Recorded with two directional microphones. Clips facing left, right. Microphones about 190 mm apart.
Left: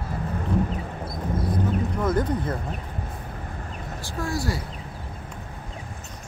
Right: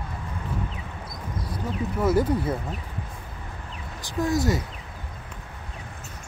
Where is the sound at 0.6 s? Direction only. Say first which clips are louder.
Left 6 dB; 50° left (ahead or behind).